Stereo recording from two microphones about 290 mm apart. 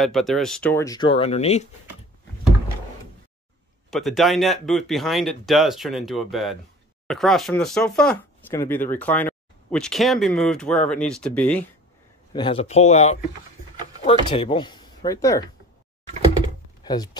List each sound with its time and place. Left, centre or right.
0.0 s speech: centre; by 1.7 s left
3.9 s speech: centre
12.3 s speech: centre
14.3 s speech: centre
16.8 s speech: centre